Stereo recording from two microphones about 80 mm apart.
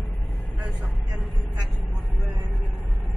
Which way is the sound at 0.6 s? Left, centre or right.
Centre.